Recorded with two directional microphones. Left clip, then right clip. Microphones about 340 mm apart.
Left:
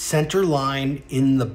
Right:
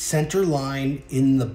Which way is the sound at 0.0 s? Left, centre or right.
Centre.